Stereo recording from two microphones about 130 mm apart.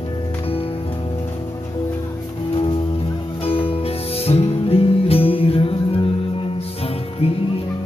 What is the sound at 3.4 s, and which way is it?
Music, 45° left (ahead or behind).